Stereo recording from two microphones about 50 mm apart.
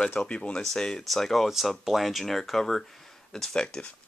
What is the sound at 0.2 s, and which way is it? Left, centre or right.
Speech, left.